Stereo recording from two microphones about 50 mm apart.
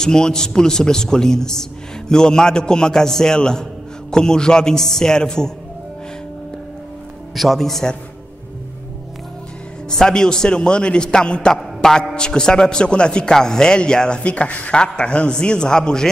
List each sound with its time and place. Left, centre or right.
0.0 s a man's voice: centre
7.3 s speech: centre
9.8 s a man's voice: centre